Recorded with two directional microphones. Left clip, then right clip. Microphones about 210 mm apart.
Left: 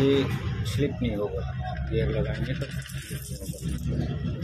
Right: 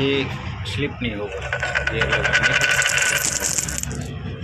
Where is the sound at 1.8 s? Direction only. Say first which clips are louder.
Right 8 dB; 45° right (ahead or behind).